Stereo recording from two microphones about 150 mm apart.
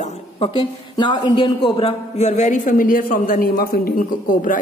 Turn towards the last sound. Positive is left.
turn(degrees=70)  # may be behind; listen again after turning